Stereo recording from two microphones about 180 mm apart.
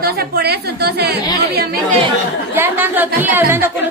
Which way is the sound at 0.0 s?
60° right (ahead or behind).